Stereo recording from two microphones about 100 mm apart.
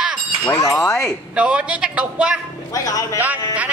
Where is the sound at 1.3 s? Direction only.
10° right (ahead or behind).